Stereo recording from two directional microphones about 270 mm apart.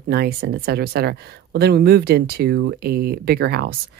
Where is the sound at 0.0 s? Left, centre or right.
Right.